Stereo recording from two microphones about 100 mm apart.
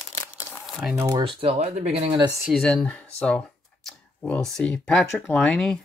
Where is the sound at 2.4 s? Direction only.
Centre (ahead or behind).